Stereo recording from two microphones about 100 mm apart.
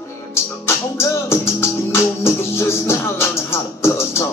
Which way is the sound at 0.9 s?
25° left (ahead or behind).